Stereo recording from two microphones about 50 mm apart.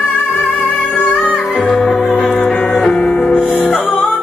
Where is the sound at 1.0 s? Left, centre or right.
Left.